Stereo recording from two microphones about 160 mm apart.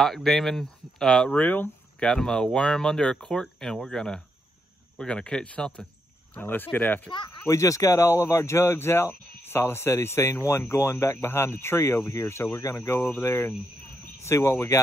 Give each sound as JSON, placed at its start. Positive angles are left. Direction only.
{"t": 0.0, "sound": "speech", "side_deg": 0}
{"t": 7.1, "sound": "speech", "side_deg": 25}